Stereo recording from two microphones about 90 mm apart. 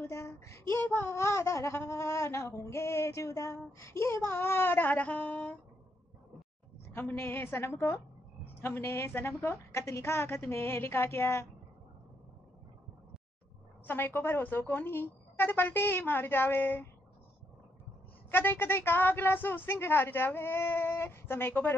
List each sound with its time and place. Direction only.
0.0 s speech: 35° left (ahead or behind); by 5.6 s 15° left (ahead or behind)
6.9 s speech: 25° left (ahead or behind)
13.8 s speech: 25° left (ahead or behind)
18.3 s speech: 25° left (ahead or behind)